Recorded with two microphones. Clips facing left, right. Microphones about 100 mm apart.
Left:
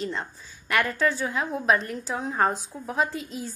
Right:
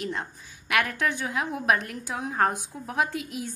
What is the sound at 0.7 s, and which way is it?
Speech, 60° right (ahead or behind).